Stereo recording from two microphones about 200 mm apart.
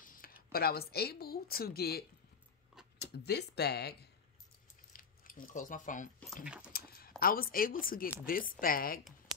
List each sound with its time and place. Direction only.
0.0 s speech: 45° left (ahead or behind)
4.9 s a sound: 45° left (ahead or behind)
6.4 s speech: 5° right (ahead or behind)
6.7 s speech: 45° left (ahead or behind)